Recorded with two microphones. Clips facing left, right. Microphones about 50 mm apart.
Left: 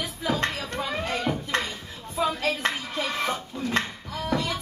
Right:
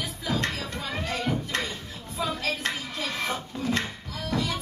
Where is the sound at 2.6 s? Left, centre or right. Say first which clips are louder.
Left 3 dB; left.